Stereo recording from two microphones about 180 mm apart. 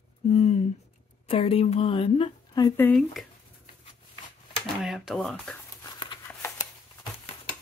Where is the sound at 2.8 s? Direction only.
5° left (ahead or behind).